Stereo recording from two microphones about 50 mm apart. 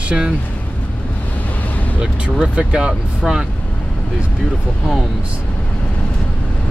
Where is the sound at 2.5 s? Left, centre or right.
Right.